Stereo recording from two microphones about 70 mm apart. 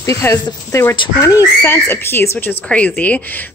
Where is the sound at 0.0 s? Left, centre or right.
Left.